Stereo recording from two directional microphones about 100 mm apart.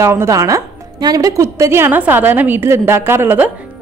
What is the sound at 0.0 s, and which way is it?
A woman's voice, 25° right (ahead or behind).